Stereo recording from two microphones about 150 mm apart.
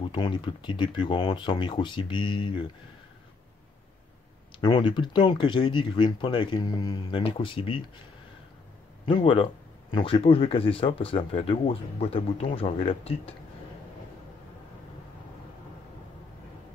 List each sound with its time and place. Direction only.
0.0 s speech: 30° left (ahead or behind)
4.6 s speech: 30° left (ahead or behind)
9.0 s speech: 35° left (ahead or behind)